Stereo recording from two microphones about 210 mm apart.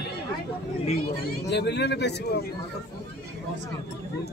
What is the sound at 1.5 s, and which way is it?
Speech, 55° left (ahead or behind).